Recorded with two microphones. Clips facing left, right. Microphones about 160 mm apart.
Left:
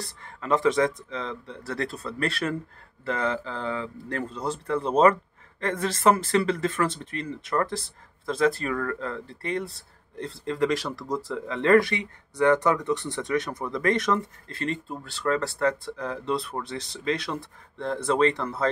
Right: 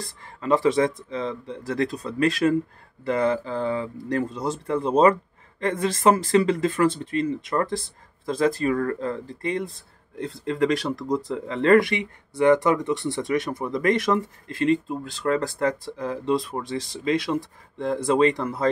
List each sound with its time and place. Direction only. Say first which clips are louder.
1.1 s speech: right 5 dB; 15° right (ahead or behind)